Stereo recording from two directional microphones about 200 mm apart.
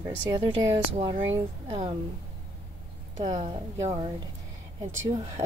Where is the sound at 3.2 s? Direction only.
35° right (ahead or behind).